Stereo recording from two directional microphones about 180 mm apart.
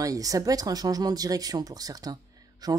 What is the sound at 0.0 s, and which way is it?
Speech, 20° right (ahead or behind).